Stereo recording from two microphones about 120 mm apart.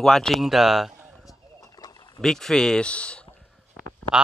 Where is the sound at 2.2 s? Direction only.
5° left (ahead or behind).